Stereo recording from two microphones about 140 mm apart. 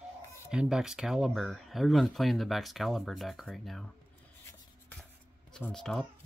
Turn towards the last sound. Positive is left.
turn(degrees=5)  # may be behind; listen again after turning